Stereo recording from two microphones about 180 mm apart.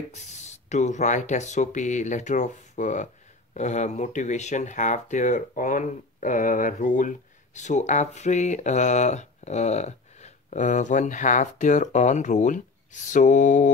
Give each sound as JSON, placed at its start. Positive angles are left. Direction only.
{"t": 0.1, "sound": "speech", "side_deg": 40}